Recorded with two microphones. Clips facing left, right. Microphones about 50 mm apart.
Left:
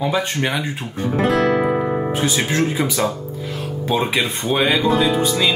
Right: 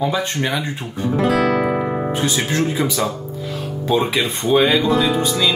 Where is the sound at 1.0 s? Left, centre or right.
Left.